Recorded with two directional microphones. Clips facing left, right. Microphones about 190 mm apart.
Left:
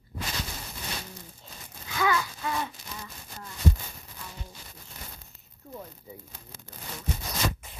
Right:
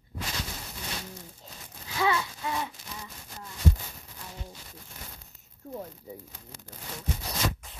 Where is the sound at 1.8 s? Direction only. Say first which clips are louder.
Even; 30° right (ahead or behind).